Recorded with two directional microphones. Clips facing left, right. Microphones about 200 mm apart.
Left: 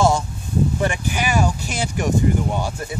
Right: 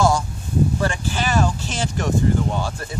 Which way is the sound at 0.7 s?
15° left (ahead or behind).